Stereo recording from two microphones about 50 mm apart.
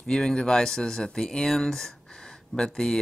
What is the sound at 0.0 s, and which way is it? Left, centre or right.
Speech, centre.